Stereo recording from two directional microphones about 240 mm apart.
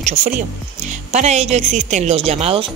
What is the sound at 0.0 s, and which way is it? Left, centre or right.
A woman's voice, right.